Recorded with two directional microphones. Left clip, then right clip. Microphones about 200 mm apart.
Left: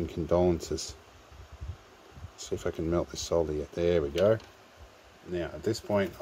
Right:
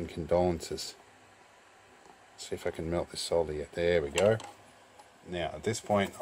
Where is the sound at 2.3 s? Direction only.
20° left (ahead or behind).